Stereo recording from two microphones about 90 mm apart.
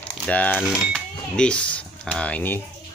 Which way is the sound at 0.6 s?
5° right (ahead or behind).